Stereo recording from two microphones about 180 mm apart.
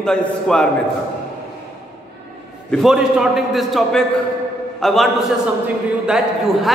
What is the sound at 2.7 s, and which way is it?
A man's voice, centre (ahead or behind).